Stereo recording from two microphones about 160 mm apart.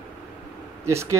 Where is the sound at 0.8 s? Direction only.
15° right (ahead or behind).